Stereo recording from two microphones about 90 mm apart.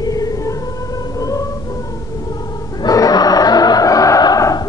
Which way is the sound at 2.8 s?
45° left (ahead or behind).